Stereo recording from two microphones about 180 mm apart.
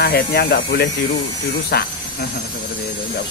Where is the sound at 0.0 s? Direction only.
60° left (ahead or behind).